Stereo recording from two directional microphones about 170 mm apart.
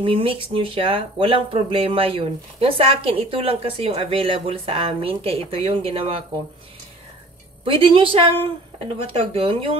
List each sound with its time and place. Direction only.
0.0 s speech: 30° right (ahead or behind)
7.6 s speech: 30° right (ahead or behind)